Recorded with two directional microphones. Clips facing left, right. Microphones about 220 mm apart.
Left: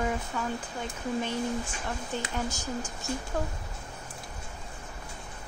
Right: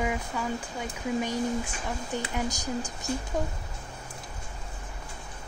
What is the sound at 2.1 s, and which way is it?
Speech, 15° right (ahead or behind).